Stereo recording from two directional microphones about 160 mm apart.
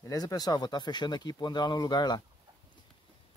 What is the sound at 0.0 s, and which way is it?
Speech, 25° left (ahead or behind).